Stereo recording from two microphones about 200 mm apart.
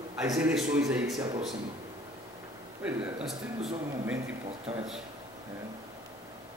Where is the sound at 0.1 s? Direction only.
5° right (ahead or behind).